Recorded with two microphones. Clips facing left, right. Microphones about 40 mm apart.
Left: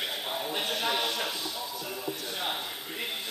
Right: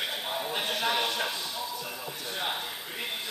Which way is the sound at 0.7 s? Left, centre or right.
Right.